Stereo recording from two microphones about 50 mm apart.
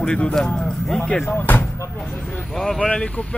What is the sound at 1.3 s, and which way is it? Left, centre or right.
Speech, left.